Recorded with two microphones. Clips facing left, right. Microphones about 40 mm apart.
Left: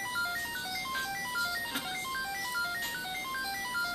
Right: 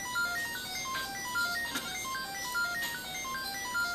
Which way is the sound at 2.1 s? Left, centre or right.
Centre.